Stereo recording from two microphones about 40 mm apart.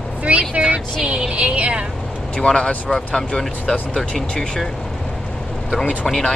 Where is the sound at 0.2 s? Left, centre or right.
Right.